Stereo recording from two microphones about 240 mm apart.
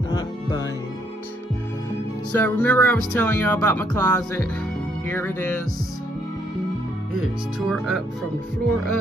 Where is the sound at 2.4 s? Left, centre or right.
Centre.